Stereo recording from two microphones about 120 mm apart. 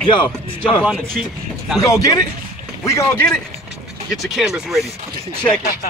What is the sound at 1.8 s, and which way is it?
A man's voice, 30° left (ahead or behind).